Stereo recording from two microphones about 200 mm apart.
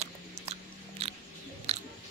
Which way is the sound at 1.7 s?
30° right (ahead or behind).